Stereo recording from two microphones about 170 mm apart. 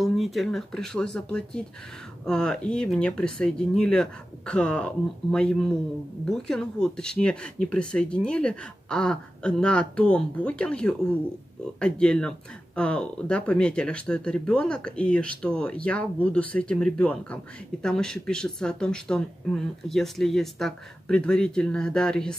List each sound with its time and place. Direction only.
0.0 s speech: centre (ahead or behind)